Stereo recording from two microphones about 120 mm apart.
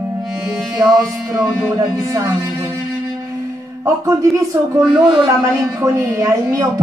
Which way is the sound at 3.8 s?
25° right (ahead or behind).